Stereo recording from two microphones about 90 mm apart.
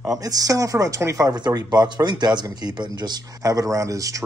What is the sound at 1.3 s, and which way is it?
Speech, 50° right (ahead or behind).